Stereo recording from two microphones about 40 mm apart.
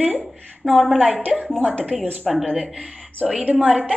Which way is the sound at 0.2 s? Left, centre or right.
Centre.